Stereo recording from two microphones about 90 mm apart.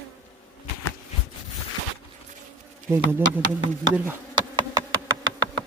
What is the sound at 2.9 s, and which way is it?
Bee, 25° right (ahead or behind).